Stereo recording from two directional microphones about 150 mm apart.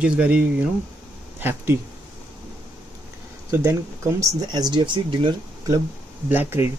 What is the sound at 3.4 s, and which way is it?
Speech, 20° right (ahead or behind).